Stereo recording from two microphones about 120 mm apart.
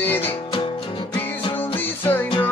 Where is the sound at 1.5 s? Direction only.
15° left (ahead or behind).